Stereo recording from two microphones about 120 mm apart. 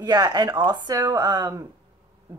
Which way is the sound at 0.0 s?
35° right (ahead or behind).